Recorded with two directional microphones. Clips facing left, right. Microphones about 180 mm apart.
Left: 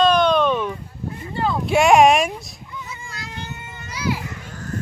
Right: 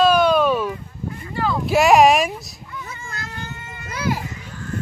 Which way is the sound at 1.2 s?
25° left (ahead or behind).